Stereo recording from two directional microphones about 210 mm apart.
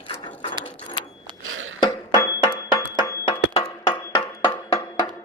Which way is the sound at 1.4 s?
70° right (ahead or behind).